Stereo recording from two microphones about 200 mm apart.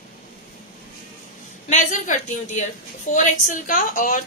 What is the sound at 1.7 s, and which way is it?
A woman's voice, 40° left (ahead or behind).